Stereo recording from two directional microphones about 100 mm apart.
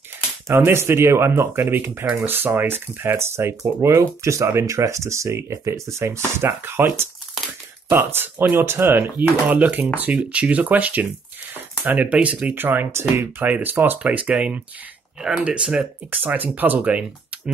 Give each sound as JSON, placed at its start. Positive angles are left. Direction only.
{"t": 0.5, "sound": "speech", "side_deg": -25}
{"t": 16.1, "sound": "speech", "side_deg": -20}